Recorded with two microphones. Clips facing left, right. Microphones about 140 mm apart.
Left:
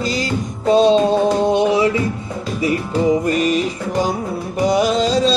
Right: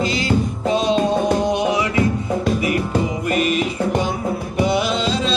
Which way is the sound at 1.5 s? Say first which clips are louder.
Left 4 dB; 30° left (ahead or behind).